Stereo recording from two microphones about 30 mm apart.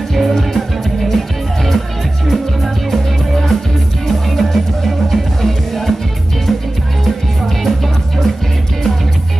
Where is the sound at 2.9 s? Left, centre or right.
Centre.